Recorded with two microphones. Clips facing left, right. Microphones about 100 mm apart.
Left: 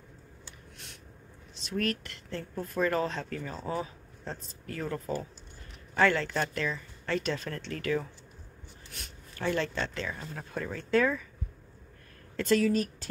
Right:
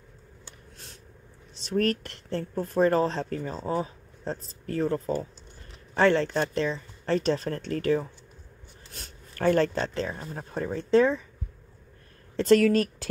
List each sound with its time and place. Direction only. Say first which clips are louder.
1.6 s speech: right 6 dB; 35° right (ahead or behind)
9.3 s speech: right 8 dB; 45° right (ahead or behind); by 11.2 s 25° right (ahead or behind)
12.4 s speech: right 6 dB; 65° right (ahead or behind)